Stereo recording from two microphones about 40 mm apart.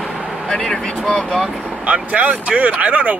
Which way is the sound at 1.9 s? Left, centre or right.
Right.